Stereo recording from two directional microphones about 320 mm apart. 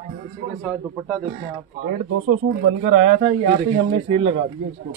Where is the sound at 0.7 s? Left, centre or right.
Centre.